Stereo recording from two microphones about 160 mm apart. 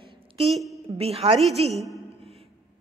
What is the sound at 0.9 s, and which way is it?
Speech, 40° right (ahead or behind).